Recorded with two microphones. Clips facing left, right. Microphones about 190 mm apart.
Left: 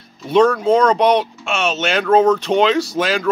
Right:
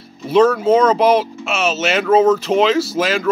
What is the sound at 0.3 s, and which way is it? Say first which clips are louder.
Speech: right 1 dB; 5° right (ahead or behind).